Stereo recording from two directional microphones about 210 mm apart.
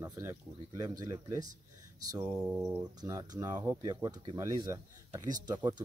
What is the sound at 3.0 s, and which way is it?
Speech, 15° right (ahead or behind).